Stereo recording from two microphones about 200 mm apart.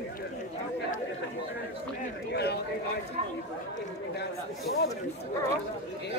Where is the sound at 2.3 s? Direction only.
55° left (ahead or behind).